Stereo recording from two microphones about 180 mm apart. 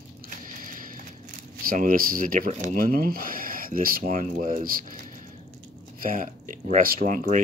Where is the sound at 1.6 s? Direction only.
50° right (ahead or behind).